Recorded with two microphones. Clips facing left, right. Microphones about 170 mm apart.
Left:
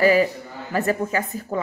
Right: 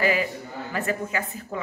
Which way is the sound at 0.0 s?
40° left (ahead or behind).